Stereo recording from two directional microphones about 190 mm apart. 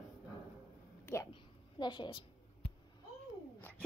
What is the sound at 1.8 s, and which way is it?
Speech, 25° left (ahead or behind).